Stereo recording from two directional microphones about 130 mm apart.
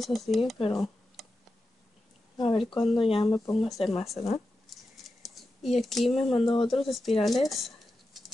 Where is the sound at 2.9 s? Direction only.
45° left (ahead or behind).